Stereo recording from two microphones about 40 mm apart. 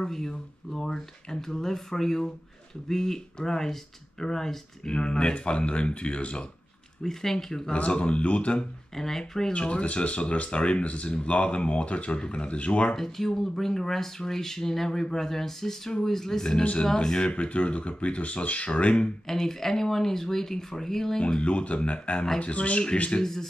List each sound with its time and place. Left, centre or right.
0.0 s speech: centre
7.0 s speech: centre
7.7 s speech: left
8.9 s speech: centre
9.5 s speech: left
12.9 s speech: centre
17.3 s speech: left
19.2 s speech: centre
21.2 s speech: left